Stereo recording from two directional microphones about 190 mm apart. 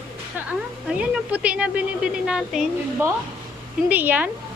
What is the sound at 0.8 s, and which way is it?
A woman's voice, 5° right (ahead or behind).